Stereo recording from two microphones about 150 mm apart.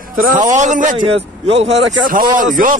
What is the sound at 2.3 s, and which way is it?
Speech, 65° right (ahead or behind).